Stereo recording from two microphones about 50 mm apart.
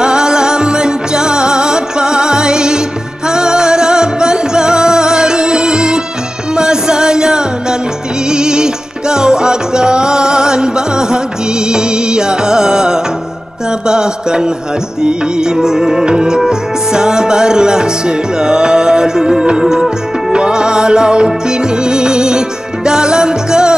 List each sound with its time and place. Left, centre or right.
0.0 s music: centre